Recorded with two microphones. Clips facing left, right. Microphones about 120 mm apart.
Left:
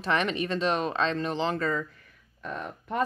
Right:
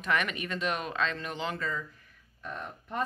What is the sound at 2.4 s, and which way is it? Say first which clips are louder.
Speech: left 4 dB; 90° left.